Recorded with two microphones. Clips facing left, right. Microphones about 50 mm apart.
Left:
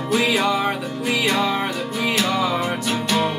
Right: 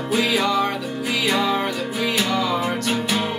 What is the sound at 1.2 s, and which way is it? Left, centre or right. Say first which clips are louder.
Music: right 1 dB; centre.